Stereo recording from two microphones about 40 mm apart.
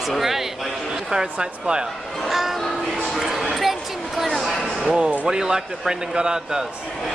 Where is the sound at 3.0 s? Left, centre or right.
Centre.